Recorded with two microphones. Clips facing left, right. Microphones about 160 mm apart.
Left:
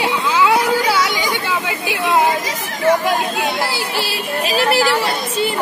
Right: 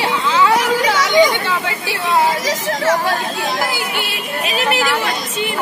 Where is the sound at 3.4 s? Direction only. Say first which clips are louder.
Even; 30° left (ahead or behind).